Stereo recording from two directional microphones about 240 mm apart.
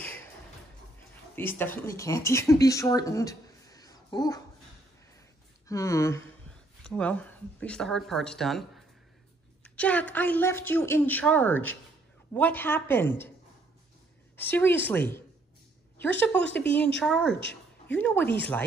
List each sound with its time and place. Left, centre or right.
1.3 s speech: centre
5.7 s a woman's voice: centre
14.3 s a woman's voice: centre
17.3 s a sound: left
17.9 s a woman's voice: centre